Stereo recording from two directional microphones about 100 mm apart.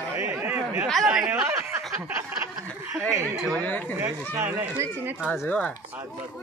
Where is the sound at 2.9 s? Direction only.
30° right (ahead or behind).